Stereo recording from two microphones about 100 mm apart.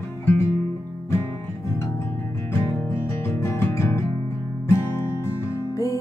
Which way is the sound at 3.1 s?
25° left (ahead or behind).